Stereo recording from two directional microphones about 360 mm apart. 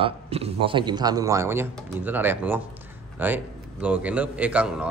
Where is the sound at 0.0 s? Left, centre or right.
Centre.